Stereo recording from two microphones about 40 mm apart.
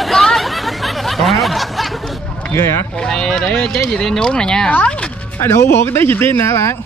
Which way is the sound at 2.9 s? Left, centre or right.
Centre.